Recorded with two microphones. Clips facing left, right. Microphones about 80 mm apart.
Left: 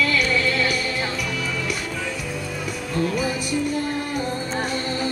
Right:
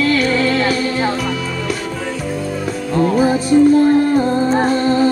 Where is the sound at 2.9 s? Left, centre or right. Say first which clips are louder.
Right 10 dB; right.